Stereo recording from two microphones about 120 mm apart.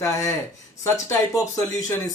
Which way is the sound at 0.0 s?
25° left (ahead or behind).